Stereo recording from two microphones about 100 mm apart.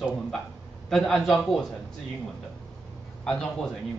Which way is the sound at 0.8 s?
5° left (ahead or behind).